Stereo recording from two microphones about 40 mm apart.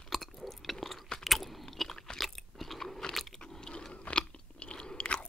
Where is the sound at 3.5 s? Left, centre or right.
Centre.